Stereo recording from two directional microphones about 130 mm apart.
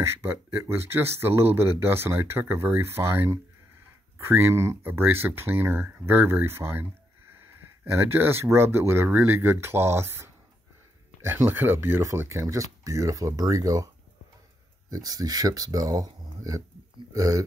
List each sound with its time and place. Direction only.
0.2 s speech: 20° right (ahead or behind)
14.9 s speech: 30° right (ahead or behind)